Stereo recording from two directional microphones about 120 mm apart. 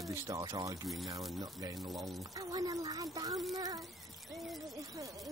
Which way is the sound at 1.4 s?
30° right (ahead or behind).